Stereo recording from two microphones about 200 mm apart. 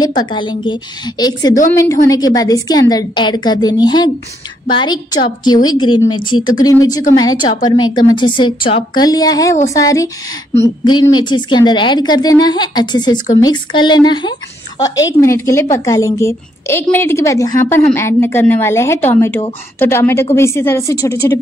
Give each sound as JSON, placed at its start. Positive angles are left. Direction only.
{"t": 0.0, "sound": "a woman's voice", "side_deg": 20}
{"t": 11.1, "sound": "a woman's voice", "side_deg": 25}